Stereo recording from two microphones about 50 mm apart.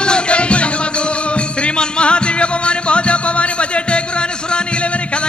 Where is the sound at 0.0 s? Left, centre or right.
Left.